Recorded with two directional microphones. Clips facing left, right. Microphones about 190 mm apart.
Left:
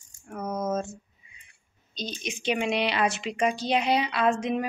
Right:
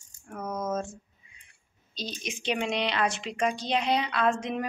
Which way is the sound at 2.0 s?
Centre (ahead or behind).